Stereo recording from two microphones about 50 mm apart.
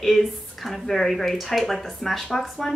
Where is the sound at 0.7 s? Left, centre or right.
Centre.